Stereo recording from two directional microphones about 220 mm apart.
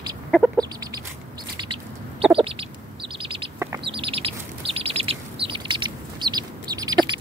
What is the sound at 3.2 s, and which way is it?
Bird, 25° right (ahead or behind).